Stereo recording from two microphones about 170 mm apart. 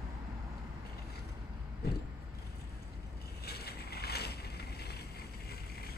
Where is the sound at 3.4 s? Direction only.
70° left (ahead or behind).